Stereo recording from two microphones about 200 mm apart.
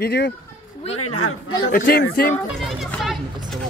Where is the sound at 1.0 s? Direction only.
90° left.